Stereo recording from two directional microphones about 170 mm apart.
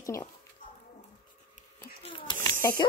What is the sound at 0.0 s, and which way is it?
Speech, 15° left (ahead or behind).